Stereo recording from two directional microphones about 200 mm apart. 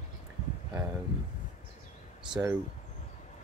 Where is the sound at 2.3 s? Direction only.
15° right (ahead or behind).